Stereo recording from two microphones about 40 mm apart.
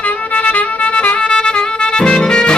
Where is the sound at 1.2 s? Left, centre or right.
Left.